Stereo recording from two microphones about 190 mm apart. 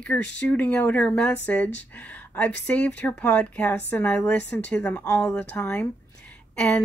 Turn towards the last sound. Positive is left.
turn(degrees=5)  # may be behind; listen again after turning